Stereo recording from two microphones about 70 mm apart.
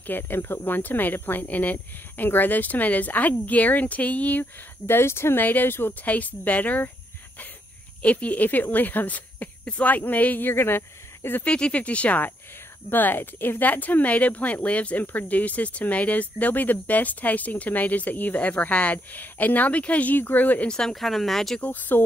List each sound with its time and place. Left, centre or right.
0.0 s speech: left
6.0 s speech: left
8.0 s speech: centre
11.4 s speech: centre
20.7 s speech: centre
21.5 s speech: left